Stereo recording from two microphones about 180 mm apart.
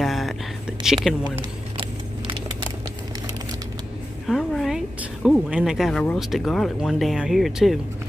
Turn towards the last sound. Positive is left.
turn(degrees=0)  # may be behind; listen again after turning